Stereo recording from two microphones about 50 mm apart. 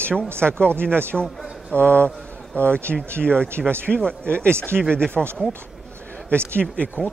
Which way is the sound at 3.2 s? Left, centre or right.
Centre.